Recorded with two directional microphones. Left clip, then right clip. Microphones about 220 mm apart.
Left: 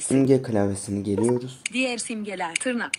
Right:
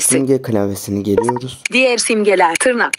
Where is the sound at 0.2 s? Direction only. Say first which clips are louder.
Right 5 dB; 30° right (ahead or behind).